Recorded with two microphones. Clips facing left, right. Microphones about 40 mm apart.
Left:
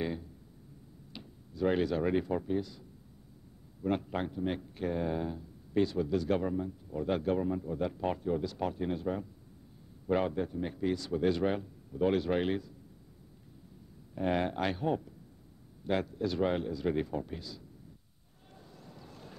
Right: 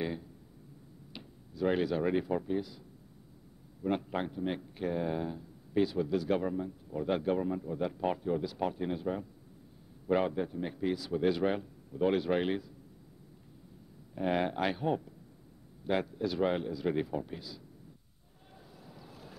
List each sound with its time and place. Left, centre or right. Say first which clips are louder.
0.0 s speech: even; centre
3.8 s a man's voice: even; centre
14.1 s a man's voice: even; centre
18.9 s boat: even; centre